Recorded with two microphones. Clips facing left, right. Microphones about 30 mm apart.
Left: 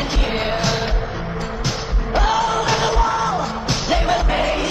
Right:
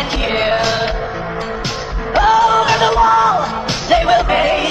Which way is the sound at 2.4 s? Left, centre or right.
Right.